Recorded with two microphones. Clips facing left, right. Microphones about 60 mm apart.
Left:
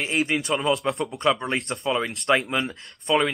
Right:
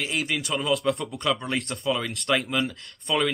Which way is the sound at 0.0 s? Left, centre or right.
Left.